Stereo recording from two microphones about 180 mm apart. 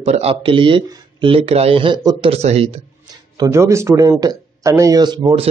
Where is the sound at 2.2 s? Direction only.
35° right (ahead or behind).